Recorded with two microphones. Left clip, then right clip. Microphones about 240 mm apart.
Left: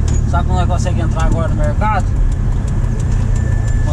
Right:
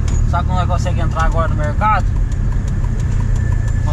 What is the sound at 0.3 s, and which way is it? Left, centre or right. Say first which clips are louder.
Vehicle: even; right.